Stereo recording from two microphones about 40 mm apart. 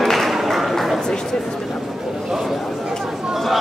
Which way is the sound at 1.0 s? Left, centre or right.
Centre.